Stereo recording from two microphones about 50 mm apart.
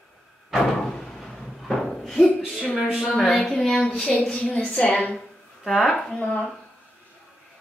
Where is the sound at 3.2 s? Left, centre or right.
Centre; by 5.2 s left.